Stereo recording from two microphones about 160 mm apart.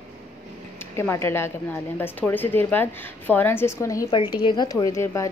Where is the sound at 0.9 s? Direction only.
15° left (ahead or behind).